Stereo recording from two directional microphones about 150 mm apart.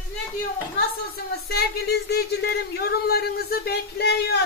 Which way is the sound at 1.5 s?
90° left.